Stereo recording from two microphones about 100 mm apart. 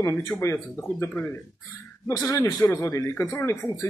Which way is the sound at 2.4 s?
35° left (ahead or behind).